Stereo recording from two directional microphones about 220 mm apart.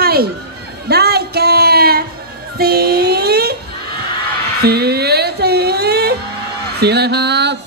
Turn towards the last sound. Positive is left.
turn(degrees=-50)  # may be behind; listen again after turning